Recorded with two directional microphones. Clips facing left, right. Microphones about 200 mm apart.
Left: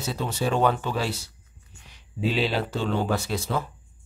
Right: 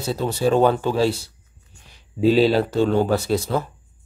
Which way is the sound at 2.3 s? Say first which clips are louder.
Right 9 dB; 40° right (ahead or behind).